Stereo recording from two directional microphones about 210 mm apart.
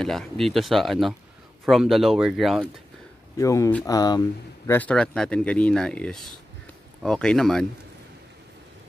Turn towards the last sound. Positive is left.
turn(degrees=0)  # may be behind; listen again after turning